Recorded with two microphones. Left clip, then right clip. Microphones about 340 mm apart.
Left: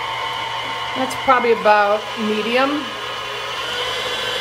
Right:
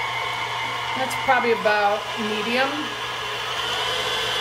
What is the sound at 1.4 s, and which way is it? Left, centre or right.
Speech, left.